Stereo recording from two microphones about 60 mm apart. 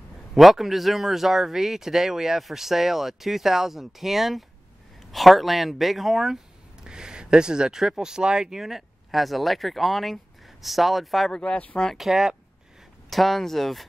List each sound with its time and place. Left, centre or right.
0.3 s speech: centre
11.3 s speech: left
12.0 s speech: centre